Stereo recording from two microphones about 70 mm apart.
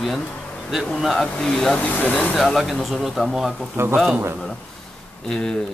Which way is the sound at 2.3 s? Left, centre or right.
Centre.